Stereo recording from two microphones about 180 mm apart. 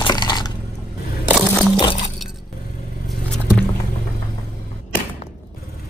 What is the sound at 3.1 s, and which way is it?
Vehicle, centre (ahead or behind).